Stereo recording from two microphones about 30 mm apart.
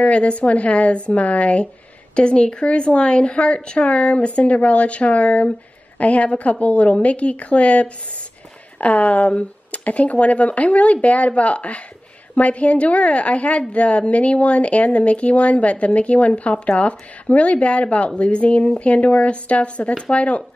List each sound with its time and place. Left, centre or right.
0.0 s a woman's voice: left
2.1 s a woman's voice: left
9.3 s a sound: left
9.8 s a woman's voice: left